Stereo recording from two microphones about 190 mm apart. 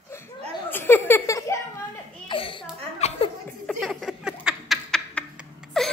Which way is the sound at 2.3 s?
30° left (ahead or behind).